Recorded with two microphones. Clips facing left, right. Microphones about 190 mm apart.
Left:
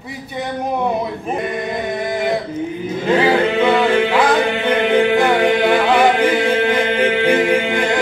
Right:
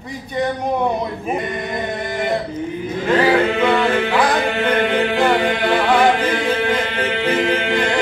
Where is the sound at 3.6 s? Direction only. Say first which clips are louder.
Left 2 dB; 10° left (ahead or behind).